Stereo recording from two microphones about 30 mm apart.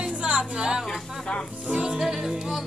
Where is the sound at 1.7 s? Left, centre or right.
Right.